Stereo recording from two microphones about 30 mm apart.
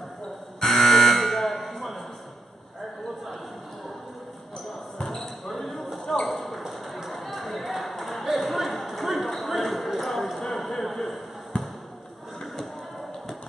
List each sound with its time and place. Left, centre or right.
0.7 s buzzer: centre
4.9 s basketball bounce: centre
6.2 s ping: centre
7.1 s a sound: centre
11.5 s basketball bounce: left